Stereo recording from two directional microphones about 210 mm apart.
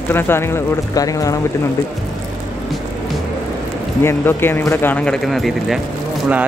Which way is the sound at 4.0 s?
10° left (ahead or behind).